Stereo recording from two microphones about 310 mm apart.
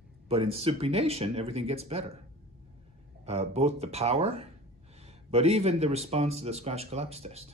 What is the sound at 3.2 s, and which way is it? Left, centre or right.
Speech, centre.